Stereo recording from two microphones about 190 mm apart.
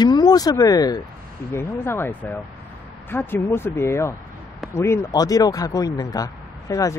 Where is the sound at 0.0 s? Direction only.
20° left (ahead or behind).